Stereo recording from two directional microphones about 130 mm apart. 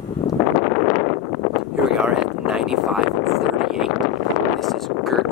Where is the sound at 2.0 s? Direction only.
5° right (ahead or behind).